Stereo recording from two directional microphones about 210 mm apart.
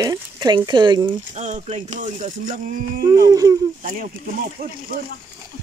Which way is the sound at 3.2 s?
15° right (ahead or behind).